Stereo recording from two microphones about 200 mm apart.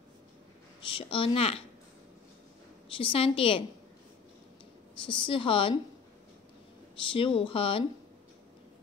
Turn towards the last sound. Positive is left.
turn(degrees=25)  # may be behind; listen again after turning